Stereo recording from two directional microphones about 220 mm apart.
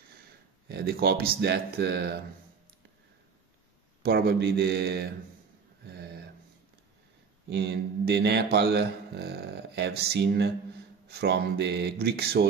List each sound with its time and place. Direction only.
0.7 s speech: 45° right (ahead or behind)
4.0 s speech: 45° right (ahead or behind)
5.9 s a sound: 50° right (ahead or behind)
7.4 s speech: 50° right (ahead or behind)